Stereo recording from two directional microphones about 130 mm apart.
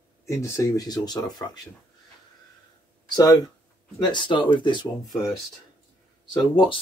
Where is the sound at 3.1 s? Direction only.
30° left (ahead or behind).